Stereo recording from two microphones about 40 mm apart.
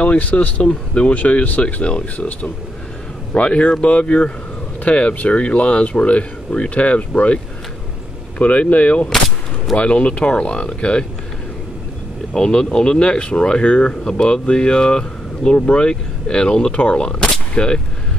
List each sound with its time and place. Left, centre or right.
0.0 s speech: left
0.6 s speech: left
8.4 s speech: left
12.4 s speech: left
17.0 s speech: centre